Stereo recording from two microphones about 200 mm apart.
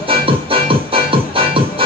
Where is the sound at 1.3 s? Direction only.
25° right (ahead or behind).